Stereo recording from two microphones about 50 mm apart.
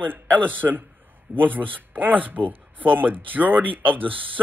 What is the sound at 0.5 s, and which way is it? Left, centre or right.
Speech, right.